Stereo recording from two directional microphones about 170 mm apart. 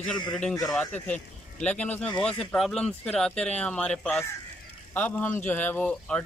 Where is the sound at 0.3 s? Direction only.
5° left (ahead or behind).